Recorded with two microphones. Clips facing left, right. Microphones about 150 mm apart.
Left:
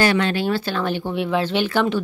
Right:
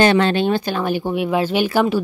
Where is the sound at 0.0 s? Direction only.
25° right (ahead or behind).